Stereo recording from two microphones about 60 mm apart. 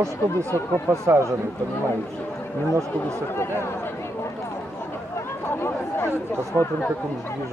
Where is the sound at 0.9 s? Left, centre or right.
Right.